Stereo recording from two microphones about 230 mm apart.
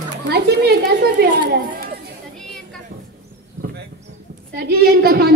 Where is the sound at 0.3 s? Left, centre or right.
Right.